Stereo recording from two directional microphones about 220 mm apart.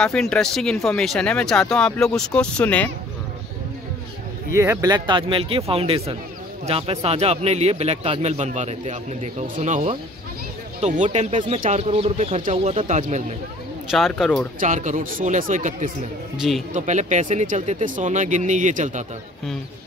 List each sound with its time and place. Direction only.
0.0 s speech: 5° left (ahead or behind)
4.6 s speech: 15° right (ahead or behind); by 13.2 s 35° right (ahead or behind)
13.8 s speech: centre (ahead or behind)
14.6 s speech: 35° right (ahead or behind)
16.3 s speech: centre (ahead or behind)
16.7 s speech: 30° right (ahead or behind)